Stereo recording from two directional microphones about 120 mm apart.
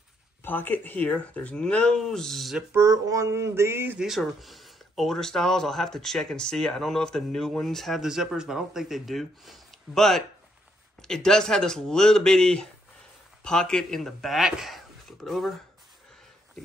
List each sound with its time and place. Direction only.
0.4 s speech: 15° left (ahead or behind); by 2.6 s centre (ahead or behind)
2.7 s a sound: 25° right (ahead or behind)
4.0 s speech: centre (ahead or behind)